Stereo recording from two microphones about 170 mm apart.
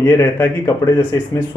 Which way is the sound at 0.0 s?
10° left (ahead or behind).